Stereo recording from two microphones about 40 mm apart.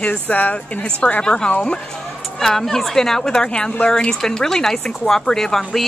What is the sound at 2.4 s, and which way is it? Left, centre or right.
A woman's voice, centre.